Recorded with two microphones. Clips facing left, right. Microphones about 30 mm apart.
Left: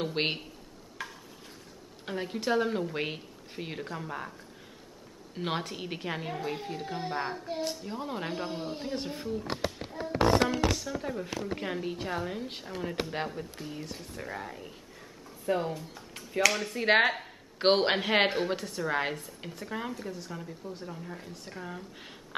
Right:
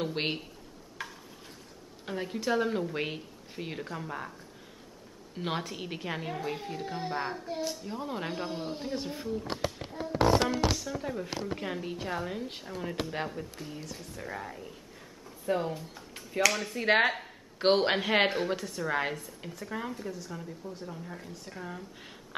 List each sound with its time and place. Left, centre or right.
0.0 s a woman's voice: centre
1.0 s a sound: centre
2.0 s a woman's voice: centre
10.1 s speech: left
10.8 s a woman's voice: centre